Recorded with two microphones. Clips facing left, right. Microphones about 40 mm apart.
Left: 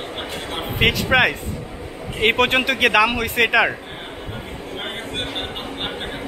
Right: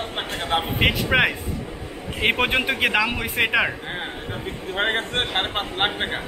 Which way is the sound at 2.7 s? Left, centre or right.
Left.